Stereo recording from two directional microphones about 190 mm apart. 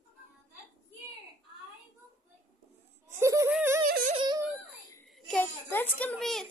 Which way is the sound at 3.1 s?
15° right (ahead or behind).